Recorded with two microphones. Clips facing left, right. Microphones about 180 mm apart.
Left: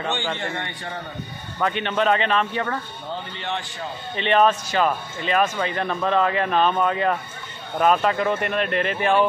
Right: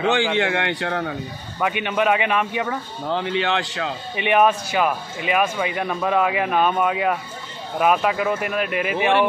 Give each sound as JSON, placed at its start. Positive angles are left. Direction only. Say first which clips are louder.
{"t": 0.0, "sound": "a man's voice", "louder": "right 7 dB", "side_deg": -90}
{"t": 1.6, "sound": "speech", "louder": "right 1 dB", "side_deg": -10}
{"t": 3.1, "sound": "a man's voice", "louder": "right 9 dB", "side_deg": -90}
{"t": 4.2, "sound": "speech", "louder": "right 1 dB", "side_deg": -10}